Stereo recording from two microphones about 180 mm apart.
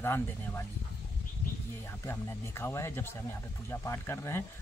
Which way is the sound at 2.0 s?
15° left (ahead or behind).